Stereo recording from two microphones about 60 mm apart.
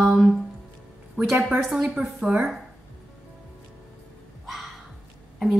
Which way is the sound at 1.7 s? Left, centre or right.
Centre.